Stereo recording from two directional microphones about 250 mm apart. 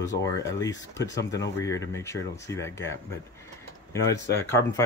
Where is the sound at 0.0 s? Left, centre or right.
Centre.